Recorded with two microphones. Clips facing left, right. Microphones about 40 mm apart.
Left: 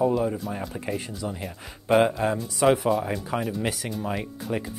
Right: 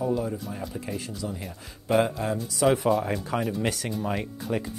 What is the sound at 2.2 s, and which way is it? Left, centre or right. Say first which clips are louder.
Speech: left 2 dB; left.